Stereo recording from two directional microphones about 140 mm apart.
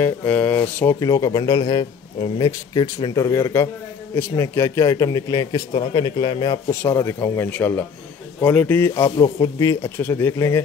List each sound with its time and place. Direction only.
0.0 s speech: 10° left (ahead or behind)